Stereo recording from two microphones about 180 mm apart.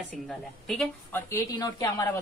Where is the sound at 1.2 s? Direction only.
15° left (ahead or behind).